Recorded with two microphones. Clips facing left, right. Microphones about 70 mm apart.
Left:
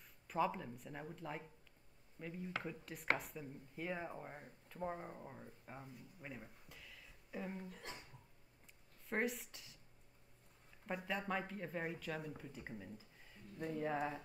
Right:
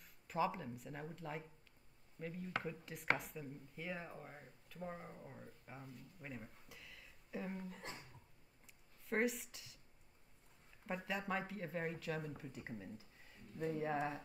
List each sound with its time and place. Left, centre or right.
0.3 s speech: centre
4.1 s speech: centre
9.1 s speech: centre
11.1 s speech: centre